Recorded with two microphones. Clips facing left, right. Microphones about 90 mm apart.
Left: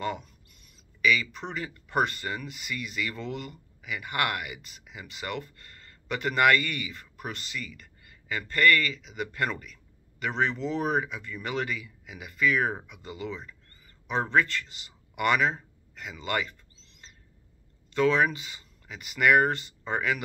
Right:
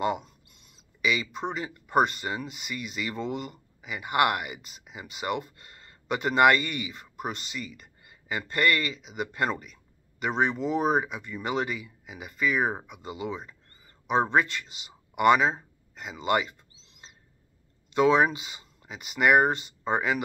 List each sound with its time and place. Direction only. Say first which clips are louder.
1.0 s speech: left 1 dB; 20° right (ahead or behind)
17.9 s speech: right 2 dB; 20° right (ahead or behind)